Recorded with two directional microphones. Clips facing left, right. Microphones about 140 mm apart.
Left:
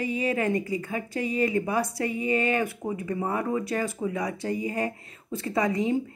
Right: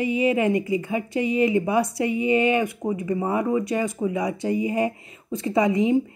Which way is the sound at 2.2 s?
20° right (ahead or behind).